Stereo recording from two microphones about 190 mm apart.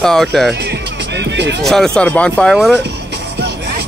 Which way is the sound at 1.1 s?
65° right (ahead or behind).